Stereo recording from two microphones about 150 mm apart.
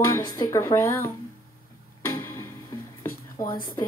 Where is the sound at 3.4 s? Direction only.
20° left (ahead or behind).